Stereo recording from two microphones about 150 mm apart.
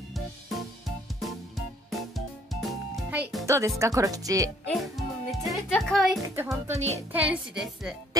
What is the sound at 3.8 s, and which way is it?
Speech, 20° right (ahead or behind).